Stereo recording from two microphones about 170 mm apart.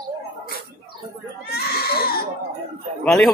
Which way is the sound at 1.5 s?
65° left (ahead or behind).